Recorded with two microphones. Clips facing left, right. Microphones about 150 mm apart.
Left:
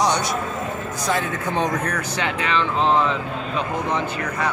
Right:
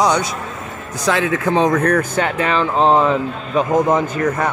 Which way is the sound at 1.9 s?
45° right (ahead or behind).